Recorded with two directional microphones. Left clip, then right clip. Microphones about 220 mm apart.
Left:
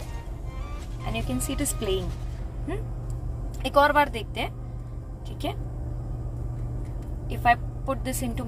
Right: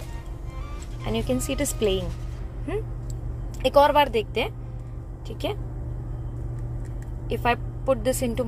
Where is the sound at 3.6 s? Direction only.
40° right (ahead or behind).